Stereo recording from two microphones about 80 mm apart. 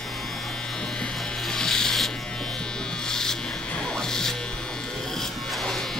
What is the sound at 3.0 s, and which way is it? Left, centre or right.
Electric shaver, centre.